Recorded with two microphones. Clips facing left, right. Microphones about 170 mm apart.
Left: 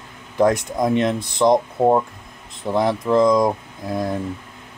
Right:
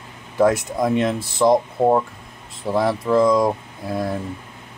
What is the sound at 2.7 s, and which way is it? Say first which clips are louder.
Speech: even; 20° left (ahead or behind).